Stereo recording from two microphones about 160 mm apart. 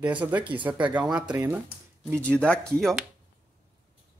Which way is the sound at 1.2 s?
25° right (ahead or behind).